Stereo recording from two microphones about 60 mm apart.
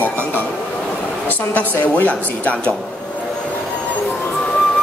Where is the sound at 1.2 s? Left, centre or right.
Left.